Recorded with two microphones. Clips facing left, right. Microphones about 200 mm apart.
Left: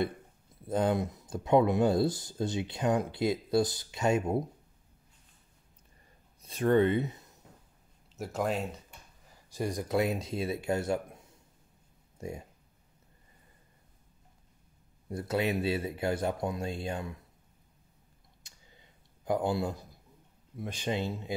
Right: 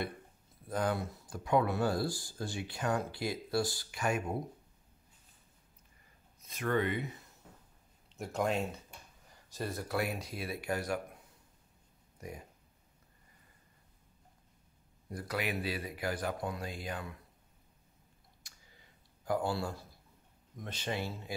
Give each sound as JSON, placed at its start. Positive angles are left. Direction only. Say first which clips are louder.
{"t": 0.7, "sound": "speech", "louder": "left 5 dB", "side_deg": 25}
{"t": 6.4, "sound": "speech", "louder": "left 8 dB", "side_deg": 30}
{"t": 8.2, "sound": "speech", "louder": "left 1 dB", "side_deg": 5}
{"t": 12.2, "sound": "speech", "louder": "left 6 dB", "side_deg": 25}
{"t": 15.0, "sound": "speech", "louder": "left 6 dB", "side_deg": 25}
{"t": 19.2, "sound": "speech", "louder": "left 4 dB", "side_deg": 20}